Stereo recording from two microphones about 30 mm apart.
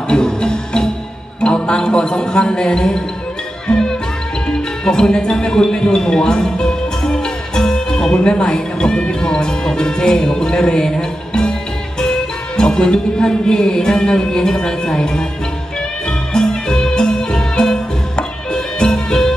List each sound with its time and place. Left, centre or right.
0.1 s music: left
1.4 s a man's voice: left
3.6 s music: left
8.2 s speech: left
10.7 s music: left
13.5 s speech: left
16.1 s music: left